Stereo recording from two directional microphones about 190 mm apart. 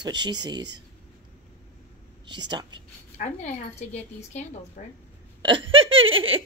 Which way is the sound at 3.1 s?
35° left (ahead or behind).